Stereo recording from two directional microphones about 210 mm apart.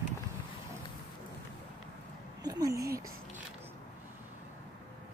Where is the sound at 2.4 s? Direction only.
15° right (ahead or behind).